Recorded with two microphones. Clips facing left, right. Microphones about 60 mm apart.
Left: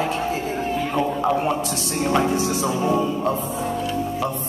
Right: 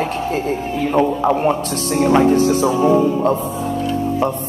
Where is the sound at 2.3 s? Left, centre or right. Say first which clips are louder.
Right 8 dB; right.